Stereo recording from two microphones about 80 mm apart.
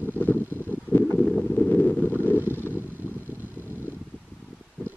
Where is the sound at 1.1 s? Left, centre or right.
Centre.